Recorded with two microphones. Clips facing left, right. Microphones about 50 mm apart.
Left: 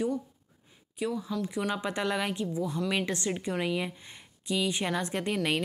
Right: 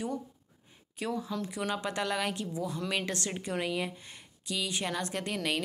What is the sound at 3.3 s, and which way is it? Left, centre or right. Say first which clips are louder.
Speech: left 3 dB; centre.